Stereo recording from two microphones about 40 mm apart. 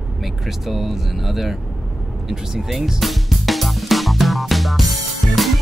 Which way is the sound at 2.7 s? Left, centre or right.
Centre.